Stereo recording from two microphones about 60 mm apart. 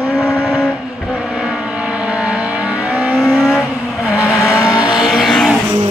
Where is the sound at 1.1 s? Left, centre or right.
Centre.